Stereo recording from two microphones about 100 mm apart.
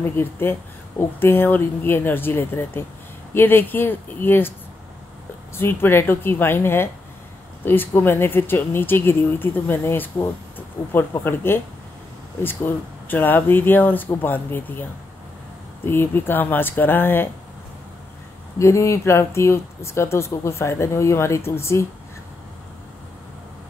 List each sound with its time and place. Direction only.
0.0 s speech: 20° left (ahead or behind)
5.6 s speech: 25° left (ahead or behind)
18.6 s speech: 30° left (ahead or behind)